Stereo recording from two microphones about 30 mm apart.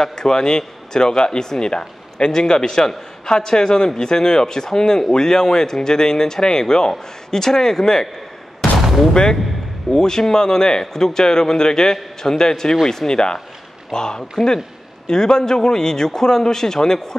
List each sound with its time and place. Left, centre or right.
0.0 s speech: left
9.1 s speech: left